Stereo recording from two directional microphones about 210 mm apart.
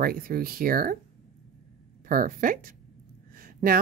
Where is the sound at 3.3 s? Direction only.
40° right (ahead or behind).